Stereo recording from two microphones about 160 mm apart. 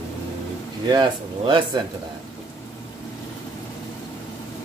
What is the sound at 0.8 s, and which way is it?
Speech, 30° right (ahead or behind).